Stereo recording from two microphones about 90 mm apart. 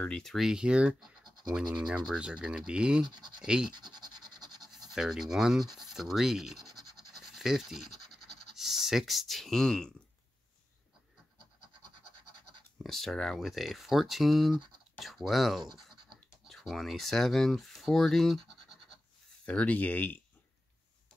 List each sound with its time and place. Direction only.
0.0 s speech: 5° left (ahead or behind); by 3.1 s 10° right (ahead or behind)
3.1 s speech: 55° right (ahead or behind)
3.4 s speech: 10° right (ahead or behind)
3.7 s scratch: 55° right (ahead or behind)
4.6 s speech: 5° right (ahead or behind)
5.8 s scratch: 5° right (ahead or behind)
12.8 s speech: 5° left (ahead or behind)
19.4 s speech: 15° left (ahead or behind)